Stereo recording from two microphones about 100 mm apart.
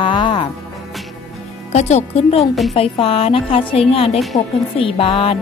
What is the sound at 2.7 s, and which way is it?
A woman's voice, 75° left (ahead or behind).